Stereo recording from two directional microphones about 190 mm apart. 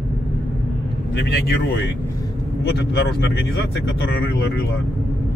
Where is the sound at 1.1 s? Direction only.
65° left (ahead or behind).